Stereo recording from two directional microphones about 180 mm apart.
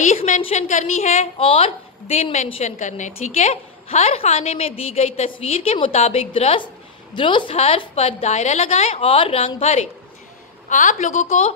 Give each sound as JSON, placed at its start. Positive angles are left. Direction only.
{"t": 0.0, "sound": "a woman's voice", "side_deg": 45}